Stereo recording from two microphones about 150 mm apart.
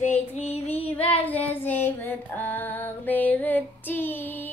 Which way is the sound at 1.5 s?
15° left (ahead or behind).